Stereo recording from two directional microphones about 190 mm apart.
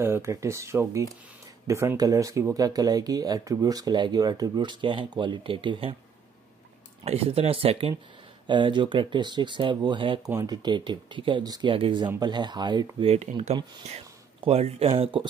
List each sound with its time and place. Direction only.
0.0 s speech: 15° right (ahead or behind)
7.1 s speech: 30° right (ahead or behind)